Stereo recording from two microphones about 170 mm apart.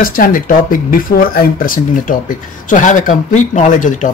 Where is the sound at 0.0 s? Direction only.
55° left (ahead or behind).